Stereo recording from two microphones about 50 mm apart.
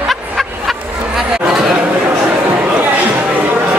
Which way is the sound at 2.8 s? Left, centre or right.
Right.